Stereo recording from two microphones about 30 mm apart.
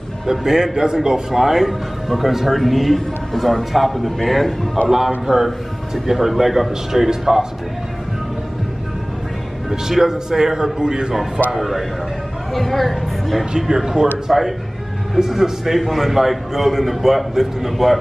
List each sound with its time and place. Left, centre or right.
0.3 s a man's voice: centre
1.3 s a man's voice: centre
9.7 s a man's voice: centre
11.5 s speech: centre
13.6 s a man's voice: centre